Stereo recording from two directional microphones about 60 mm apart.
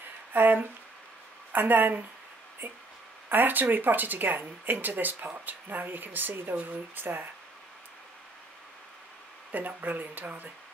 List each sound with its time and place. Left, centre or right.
0.3 s speech: right
9.5 s speech: right